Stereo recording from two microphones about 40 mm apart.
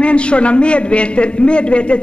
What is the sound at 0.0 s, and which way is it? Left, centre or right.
A man's voice, left.